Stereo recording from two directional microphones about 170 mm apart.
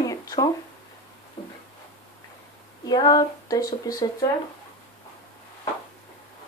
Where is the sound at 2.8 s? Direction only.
20° left (ahead or behind).